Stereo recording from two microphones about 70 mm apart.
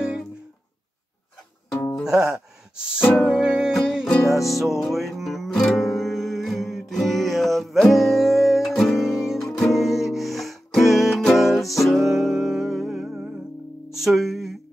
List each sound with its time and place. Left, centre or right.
2.0 s gasp: centre
3.0 s music: left
3.3 s music: centre
4.3 s music: centre
9.4 s music: centre
9.7 s music: centre